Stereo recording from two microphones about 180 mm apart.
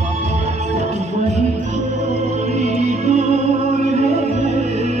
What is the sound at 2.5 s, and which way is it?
Music, 40° right (ahead or behind).